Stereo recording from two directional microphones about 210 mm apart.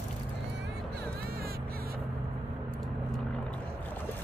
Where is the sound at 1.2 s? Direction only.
45° right (ahead or behind).